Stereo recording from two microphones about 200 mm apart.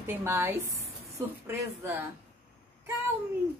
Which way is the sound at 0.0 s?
10° right (ahead or behind).